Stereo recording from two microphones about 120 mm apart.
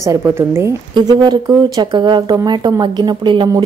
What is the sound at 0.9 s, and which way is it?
Speech, 35° right (ahead or behind).